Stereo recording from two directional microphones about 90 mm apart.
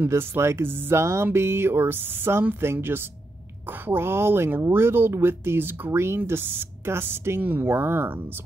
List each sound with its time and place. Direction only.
0.0 s speech: 25° right (ahead or behind)